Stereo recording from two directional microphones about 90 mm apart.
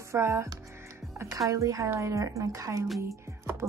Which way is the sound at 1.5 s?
40° right (ahead or behind).